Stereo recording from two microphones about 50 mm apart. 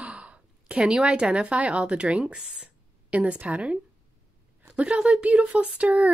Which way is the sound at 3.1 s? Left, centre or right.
Right.